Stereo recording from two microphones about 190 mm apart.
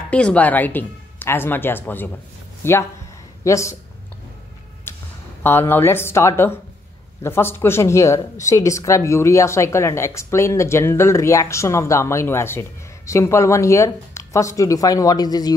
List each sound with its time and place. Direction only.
0.1 s speech: 5° left (ahead or behind)
4.9 s a sound: 10° left (ahead or behind)
5.4 s speech: 10° left (ahead or behind)